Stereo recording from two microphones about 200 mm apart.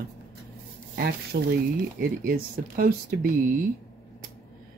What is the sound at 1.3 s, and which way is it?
Speech, 55° right (ahead or behind).